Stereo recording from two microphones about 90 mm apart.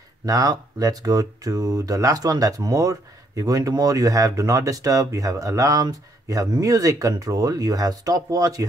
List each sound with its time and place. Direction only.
0.2 s speech: 45° right (ahead or behind)